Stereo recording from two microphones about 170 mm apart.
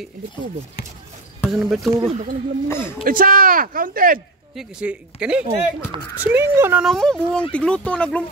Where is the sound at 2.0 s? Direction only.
40° right (ahead or behind).